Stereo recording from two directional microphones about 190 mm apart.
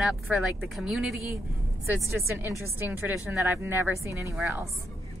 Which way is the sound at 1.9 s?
10° right (ahead or behind).